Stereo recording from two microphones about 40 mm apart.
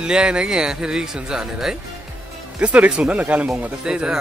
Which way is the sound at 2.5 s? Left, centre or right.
Right.